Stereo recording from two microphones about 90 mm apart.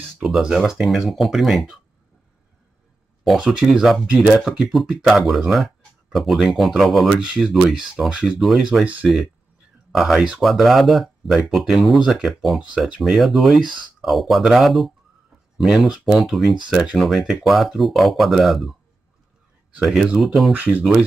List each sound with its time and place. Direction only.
0.2 s speech: 5° right (ahead or behind)
3.3 s speech: 5° right (ahead or behind)
20.5 s speech: 20° right (ahead or behind)